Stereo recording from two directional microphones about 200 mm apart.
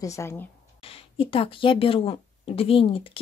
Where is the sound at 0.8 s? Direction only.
25° left (ahead or behind).